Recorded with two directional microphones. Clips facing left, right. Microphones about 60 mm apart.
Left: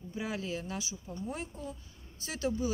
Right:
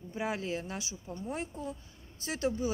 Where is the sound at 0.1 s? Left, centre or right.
Right.